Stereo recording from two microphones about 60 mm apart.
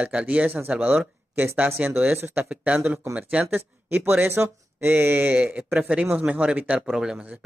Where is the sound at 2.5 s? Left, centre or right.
Right.